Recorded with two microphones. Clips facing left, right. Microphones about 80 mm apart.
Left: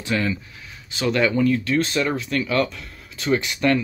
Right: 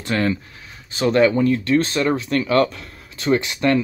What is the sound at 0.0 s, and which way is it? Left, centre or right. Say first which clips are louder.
Speech: right 3 dB; right.